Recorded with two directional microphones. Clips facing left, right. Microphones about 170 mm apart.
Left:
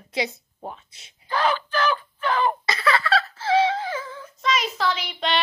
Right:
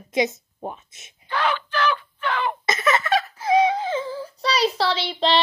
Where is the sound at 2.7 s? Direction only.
20° right (ahead or behind).